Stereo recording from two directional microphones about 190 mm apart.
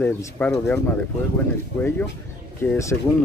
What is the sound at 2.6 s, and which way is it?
Speech, 15° left (ahead or behind).